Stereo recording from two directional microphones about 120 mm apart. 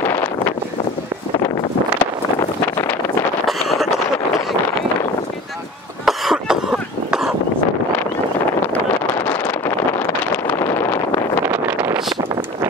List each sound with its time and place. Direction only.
0.0 s a sound: 20° left (ahead or behind)
2.6 s wind noise: 20° left (ahead or behind)
3.4 s wind noise: centre (ahead or behind)
6.0 s cough: 5° right (ahead or behind)
8.7 s vehicle: 10° left (ahead or behind)
11.4 s wind noise: 15° right (ahead or behind)